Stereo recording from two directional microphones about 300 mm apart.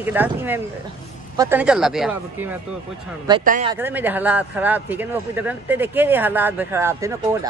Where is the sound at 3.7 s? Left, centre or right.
Centre.